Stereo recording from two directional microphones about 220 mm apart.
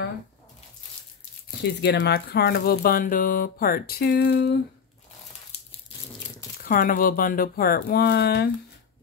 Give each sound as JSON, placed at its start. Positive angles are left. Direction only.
{"t": 1.6, "sound": "speech", "side_deg": 50}
{"t": 6.6, "sound": "speech", "side_deg": 40}